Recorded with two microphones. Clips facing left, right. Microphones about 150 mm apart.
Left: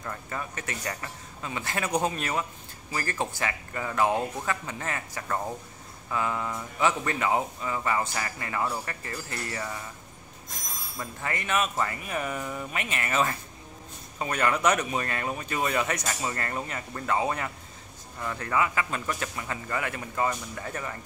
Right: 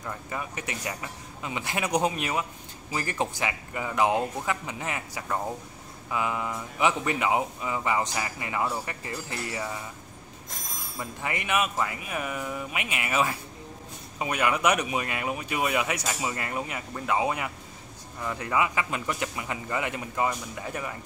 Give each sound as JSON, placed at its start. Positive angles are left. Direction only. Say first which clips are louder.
{"t": 0.0, "sound": "speech", "louder": "right 1 dB", "side_deg": -10}
{"t": 11.0, "sound": "speech", "louder": "right 1 dB", "side_deg": -15}